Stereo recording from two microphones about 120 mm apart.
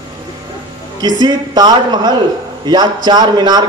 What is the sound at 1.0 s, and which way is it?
A man's voice, 35° right (ahead or behind).